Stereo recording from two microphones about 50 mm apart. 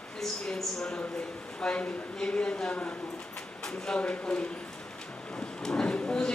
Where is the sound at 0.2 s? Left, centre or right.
Centre.